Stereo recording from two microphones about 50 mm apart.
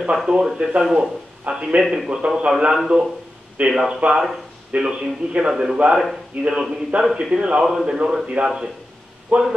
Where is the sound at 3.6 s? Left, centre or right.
Right.